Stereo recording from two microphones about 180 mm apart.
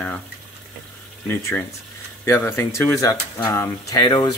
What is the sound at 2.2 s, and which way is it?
Speech, 15° left (ahead or behind).